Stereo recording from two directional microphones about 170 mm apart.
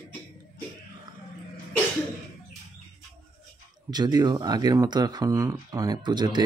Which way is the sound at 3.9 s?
25° right (ahead or behind).